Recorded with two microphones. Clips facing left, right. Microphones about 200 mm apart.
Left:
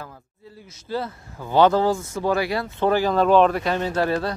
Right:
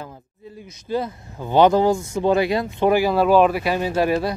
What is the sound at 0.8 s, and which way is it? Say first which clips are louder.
Speech: right 3 dB; 15° right (ahead or behind).